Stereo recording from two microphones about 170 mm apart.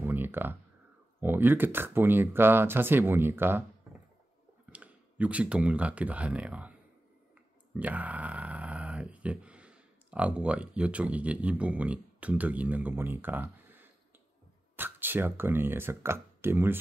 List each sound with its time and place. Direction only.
0.0 s a sound: 10° right (ahead or behind)
1.2 s speech: 10° right (ahead or behind)
4.6 s speech: 10° right (ahead or behind)
7.7 s speech: 10° right (ahead or behind)